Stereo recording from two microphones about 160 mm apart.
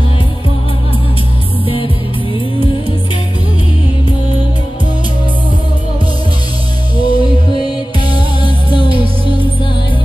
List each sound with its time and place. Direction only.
7.0 s music: 35° right (ahead or behind)